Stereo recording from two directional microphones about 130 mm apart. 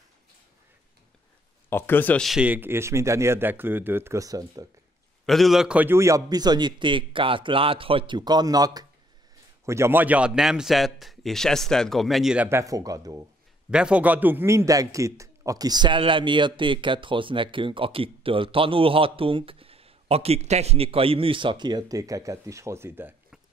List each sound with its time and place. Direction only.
1.7 s speech: 15° left (ahead or behind)
2.2 s speech: 5° right (ahead or behind); by 4.6 s 30° right (ahead or behind)
5.2 s a man's voice: centre (ahead or behind); by 8.8 s 30° right (ahead or behind)
9.7 s a man's voice: 20° right (ahead or behind); by 12.4 s 5° right (ahead or behind)
12.4 s speech: 20° right (ahead or behind)
13.7 s a man's voice: 5° right (ahead or behind)